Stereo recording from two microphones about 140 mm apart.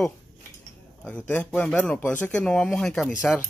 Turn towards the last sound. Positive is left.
turn(degrees=10)  # may be behind; listen again after turning